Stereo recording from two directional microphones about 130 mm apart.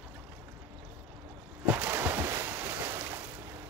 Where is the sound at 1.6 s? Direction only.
15° right (ahead or behind).